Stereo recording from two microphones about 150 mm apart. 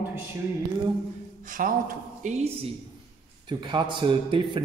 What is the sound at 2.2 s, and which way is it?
Speech, 45° right (ahead or behind).